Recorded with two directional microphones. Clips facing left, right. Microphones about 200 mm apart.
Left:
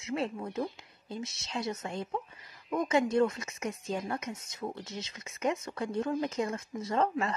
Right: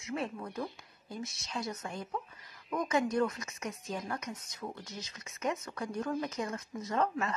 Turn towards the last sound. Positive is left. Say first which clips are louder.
# left 3 dB
turn(degrees=30)  # may be behind; listen again after turning